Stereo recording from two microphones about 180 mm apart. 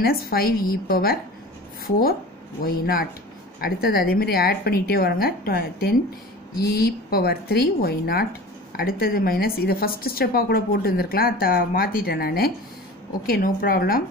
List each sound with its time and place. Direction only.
0.0 s a woman's voice: 55° left (ahead or behind)